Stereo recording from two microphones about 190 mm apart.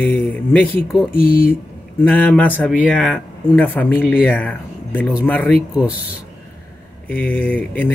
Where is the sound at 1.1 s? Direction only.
50° left (ahead or behind).